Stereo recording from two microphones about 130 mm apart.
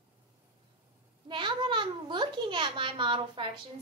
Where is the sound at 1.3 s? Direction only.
40° right (ahead or behind).